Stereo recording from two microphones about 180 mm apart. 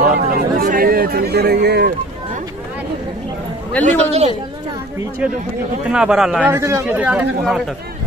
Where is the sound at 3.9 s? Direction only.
40° right (ahead or behind).